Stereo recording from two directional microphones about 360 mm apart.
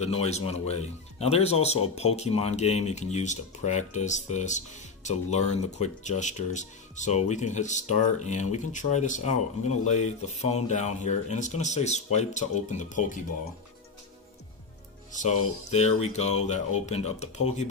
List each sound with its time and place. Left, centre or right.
0.0 s speech: centre
15.7 s speech: centre